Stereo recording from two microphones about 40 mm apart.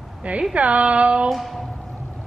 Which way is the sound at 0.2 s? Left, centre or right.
Right.